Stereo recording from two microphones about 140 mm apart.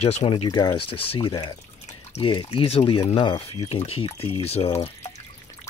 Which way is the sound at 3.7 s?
45° left (ahead or behind).